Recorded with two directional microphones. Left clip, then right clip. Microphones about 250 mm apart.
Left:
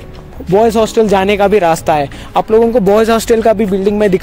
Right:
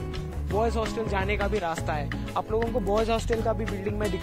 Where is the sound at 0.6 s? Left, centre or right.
Left.